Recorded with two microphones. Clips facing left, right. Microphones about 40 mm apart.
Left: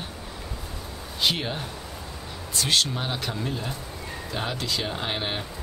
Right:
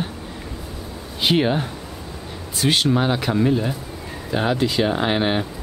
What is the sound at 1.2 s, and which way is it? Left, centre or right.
Speech, centre.